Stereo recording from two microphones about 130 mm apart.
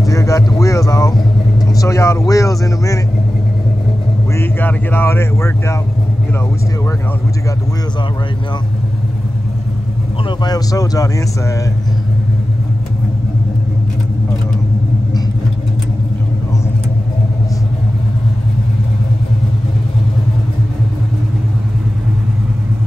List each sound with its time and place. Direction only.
0.0 s speech: 25° left (ahead or behind)
4.4 s speech: 15° left (ahead or behind)
10.4 s speech: 30° left (ahead or behind)